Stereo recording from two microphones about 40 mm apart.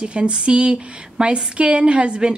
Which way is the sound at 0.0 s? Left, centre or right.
Right.